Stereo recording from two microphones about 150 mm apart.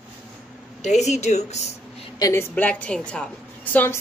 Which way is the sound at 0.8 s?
50° left (ahead or behind).